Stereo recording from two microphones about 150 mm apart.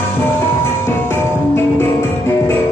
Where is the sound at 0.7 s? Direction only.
15° left (ahead or behind).